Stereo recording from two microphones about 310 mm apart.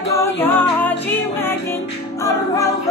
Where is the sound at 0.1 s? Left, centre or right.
Centre.